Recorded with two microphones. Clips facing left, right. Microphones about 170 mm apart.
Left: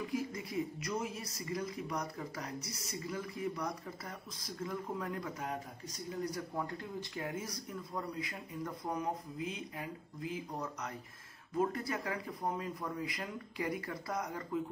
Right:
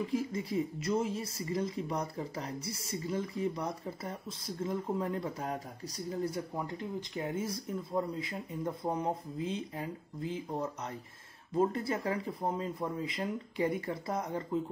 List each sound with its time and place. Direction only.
0.1 s speech: 25° right (ahead or behind)